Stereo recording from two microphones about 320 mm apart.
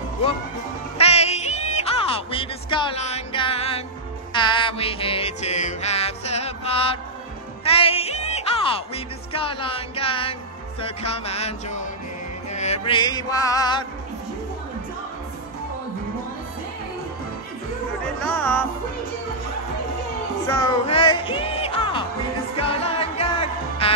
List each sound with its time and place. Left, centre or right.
0.9 s music: centre
18.2 s music: centre
20.8 s music: centre